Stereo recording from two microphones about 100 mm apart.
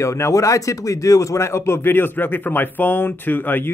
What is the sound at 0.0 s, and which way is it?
A man's voice, 30° left (ahead or behind).